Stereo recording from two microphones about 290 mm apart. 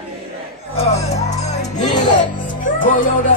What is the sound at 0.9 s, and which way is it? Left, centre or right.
Music, left.